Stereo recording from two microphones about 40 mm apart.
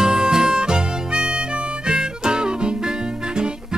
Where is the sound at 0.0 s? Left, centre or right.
Centre.